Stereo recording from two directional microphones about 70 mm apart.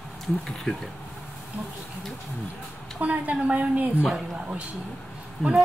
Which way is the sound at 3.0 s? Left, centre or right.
Right.